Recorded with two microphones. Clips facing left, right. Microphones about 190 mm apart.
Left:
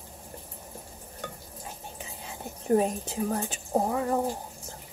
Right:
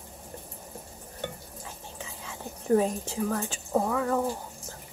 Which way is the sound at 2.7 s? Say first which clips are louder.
Even; 20° left (ahead or behind).